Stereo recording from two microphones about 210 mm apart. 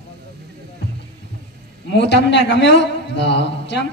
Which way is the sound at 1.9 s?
55° left (ahead or behind).